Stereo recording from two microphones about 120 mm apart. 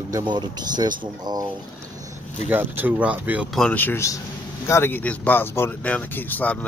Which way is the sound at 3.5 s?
10° left (ahead or behind).